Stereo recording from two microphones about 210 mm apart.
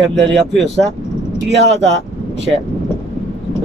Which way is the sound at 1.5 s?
55° right (ahead or behind).